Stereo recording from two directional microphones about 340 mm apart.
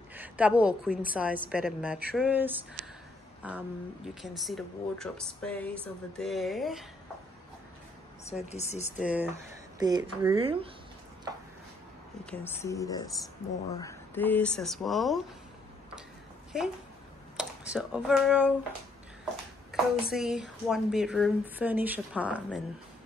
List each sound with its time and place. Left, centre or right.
0.1 s a woman's voice: centre
8.3 s speech: centre
9.0 s speech: centre
12.3 s a woman's voice: centre
17.4 s speech: centre
19.7 s a woman's voice: centre